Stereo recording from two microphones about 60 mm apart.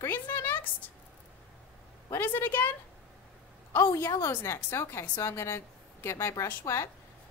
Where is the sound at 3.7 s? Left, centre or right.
Left.